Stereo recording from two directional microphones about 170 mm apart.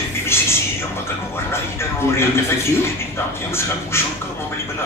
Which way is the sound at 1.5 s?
15° left (ahead or behind).